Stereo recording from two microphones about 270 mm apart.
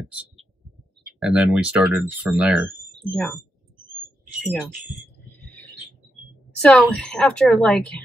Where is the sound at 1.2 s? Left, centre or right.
Centre.